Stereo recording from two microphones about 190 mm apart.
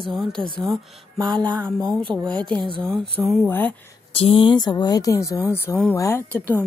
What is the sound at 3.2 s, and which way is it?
Speech, 10° right (ahead or behind).